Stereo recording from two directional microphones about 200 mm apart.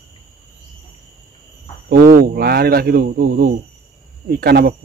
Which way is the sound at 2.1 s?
50° right (ahead or behind).